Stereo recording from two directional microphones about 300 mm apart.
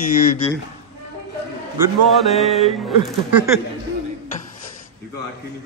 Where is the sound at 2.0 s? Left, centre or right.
Centre.